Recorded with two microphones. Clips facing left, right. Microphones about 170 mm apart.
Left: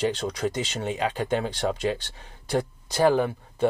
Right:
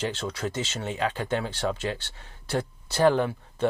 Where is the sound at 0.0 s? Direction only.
15° left (ahead or behind).